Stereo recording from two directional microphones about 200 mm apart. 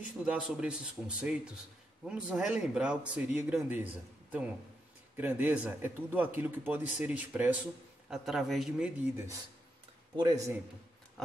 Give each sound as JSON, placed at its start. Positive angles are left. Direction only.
{"t": 0.2, "sound": "speech", "side_deg": -5}
{"t": 10.1, "sound": "speech", "side_deg": -20}